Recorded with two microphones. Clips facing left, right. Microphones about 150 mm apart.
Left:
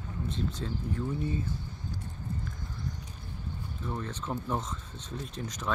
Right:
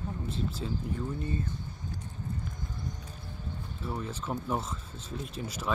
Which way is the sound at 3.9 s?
5° right (ahead or behind).